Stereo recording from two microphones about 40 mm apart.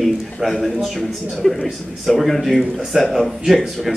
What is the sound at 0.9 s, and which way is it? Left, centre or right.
Speech, centre.